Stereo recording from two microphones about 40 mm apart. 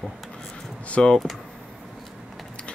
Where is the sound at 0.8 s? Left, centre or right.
Left.